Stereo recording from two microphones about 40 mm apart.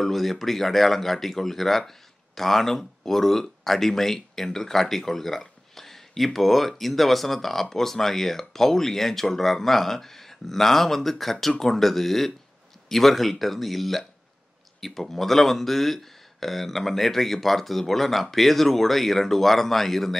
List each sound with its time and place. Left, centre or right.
0.0 s speech: centre